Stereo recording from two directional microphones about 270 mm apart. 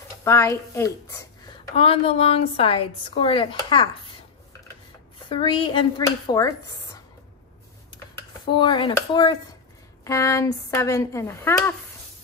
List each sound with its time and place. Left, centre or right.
0.2 s speech: centre
1.8 s a woman's voice: left
5.3 s speech: centre
8.5 s speech: centre